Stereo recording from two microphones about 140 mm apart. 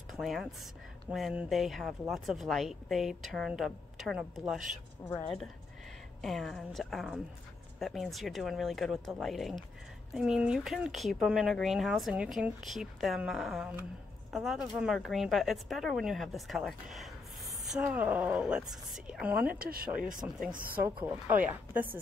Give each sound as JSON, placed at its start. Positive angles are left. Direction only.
{"t": 0.1, "sound": "speech", "side_deg": 0}
{"t": 6.2, "sound": "speech", "side_deg": 0}
{"t": 19.5, "sound": "speech", "side_deg": -90}
{"t": 20.2, "sound": "speech", "side_deg": -15}
{"t": 20.5, "sound": "speech", "side_deg": -90}
{"t": 20.8, "sound": "speech", "side_deg": -15}